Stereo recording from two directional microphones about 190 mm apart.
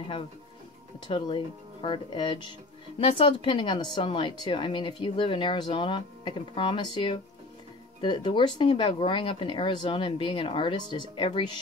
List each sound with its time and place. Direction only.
0.9 s speech: 25° left (ahead or behind)